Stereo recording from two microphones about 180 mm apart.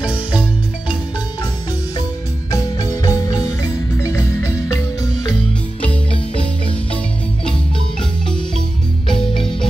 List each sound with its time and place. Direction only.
2.5 s music: 20° left (ahead or behind)
8.0 s music: 5° left (ahead or behind)